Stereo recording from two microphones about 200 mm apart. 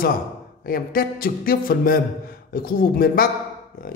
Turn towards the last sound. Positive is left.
turn(degrees=45)  # may be behind; listen again after turning